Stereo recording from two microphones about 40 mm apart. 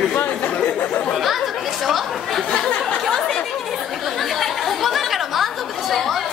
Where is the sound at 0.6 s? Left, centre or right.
Left.